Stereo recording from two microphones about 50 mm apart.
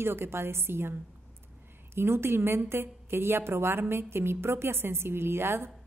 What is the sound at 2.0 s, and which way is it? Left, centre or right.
A woman's voice, right.